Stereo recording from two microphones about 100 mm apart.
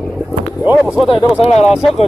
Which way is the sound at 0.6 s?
20° right (ahead or behind).